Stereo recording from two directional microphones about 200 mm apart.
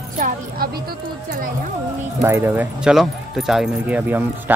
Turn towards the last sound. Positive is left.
turn(degrees=-5)  # may be behind; listen again after turning